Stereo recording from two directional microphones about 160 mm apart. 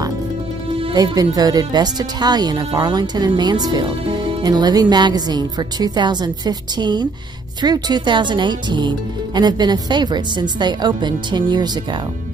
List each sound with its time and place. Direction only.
0.7 s speech: 25° right (ahead or behind)